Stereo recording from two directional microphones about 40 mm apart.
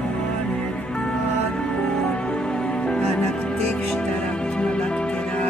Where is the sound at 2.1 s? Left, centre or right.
Left.